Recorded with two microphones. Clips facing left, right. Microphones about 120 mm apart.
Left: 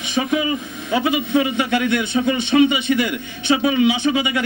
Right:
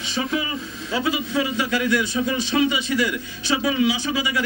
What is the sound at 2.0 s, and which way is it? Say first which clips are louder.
A man's voice: left 4 dB; 20° left (ahead or behind).